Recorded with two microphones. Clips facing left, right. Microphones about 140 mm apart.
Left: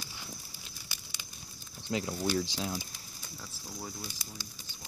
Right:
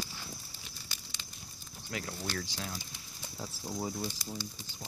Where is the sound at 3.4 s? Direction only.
25° right (ahead or behind).